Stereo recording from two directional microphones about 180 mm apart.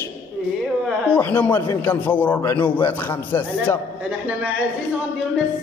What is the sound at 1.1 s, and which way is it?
Speech, 10° left (ahead or behind).